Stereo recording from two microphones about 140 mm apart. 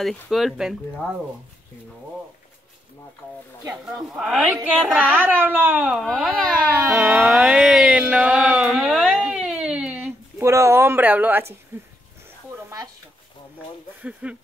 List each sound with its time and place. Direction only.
0.0 s a woman's voice: centre (ahead or behind)
3.2 s speech: 15° left (ahead or behind)
3.7 s a woman's voice: centre (ahead or behind)
6.9 s music: 5° right (ahead or behind)
12.5 s a sound: 15° right (ahead or behind)
14.2 s speech: 10° right (ahead or behind)